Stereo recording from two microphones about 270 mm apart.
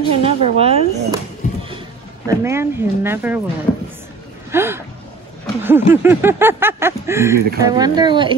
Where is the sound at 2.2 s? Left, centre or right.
Centre.